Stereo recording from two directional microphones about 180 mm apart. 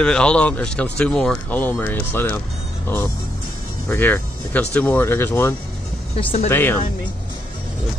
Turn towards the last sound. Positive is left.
turn(degrees=10)  # may be behind; listen again after turning